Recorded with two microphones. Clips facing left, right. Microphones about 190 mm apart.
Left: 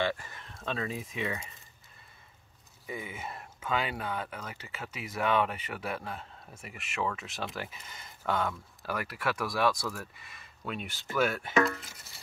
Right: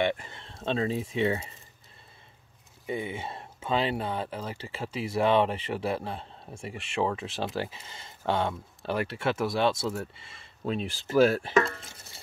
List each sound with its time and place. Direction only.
0.0 s speech: 20° right (ahead or behind)
2.9 s speech: 30° right (ahead or behind)